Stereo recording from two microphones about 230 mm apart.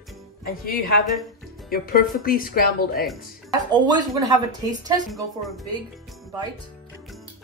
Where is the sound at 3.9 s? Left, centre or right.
Centre.